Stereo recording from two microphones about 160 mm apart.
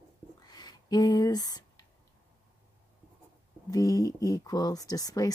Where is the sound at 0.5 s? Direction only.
25° left (ahead or behind).